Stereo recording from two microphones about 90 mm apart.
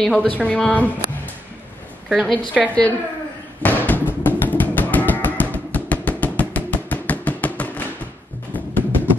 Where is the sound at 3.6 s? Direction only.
20° left (ahead or behind).